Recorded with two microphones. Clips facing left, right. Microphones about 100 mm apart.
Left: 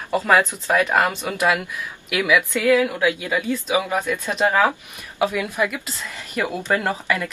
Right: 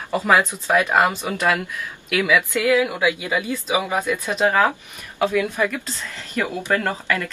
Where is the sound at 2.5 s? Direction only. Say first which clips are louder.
Left 1 dB; 15° right (ahead or behind).